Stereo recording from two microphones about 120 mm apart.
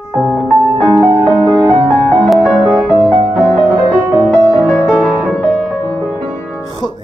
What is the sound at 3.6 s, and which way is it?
Music, 15° right (ahead or behind).